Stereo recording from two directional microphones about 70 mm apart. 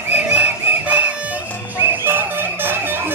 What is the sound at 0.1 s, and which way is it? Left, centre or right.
Music, right.